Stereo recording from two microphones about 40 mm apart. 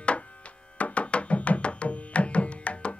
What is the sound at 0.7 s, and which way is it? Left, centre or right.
Music, left.